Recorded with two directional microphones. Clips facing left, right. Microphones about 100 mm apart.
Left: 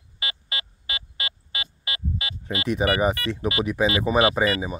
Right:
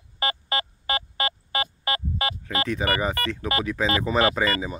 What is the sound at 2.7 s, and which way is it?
Speech, 20° left (ahead or behind).